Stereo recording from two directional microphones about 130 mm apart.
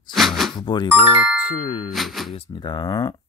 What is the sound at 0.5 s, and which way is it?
Speech, 35° left (ahead or behind).